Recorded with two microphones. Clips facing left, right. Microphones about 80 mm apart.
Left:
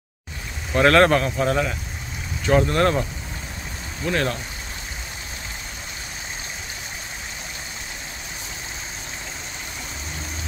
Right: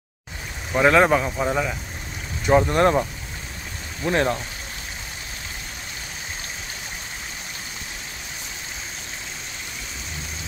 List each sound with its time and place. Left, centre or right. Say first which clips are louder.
0.7 s speech: left 1 dB; centre; by 4.4 s right